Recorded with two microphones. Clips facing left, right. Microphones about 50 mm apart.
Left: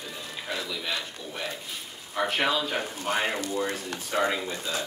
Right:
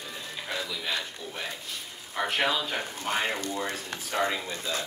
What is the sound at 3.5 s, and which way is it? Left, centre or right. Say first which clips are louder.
Speech: left 3 dB; left.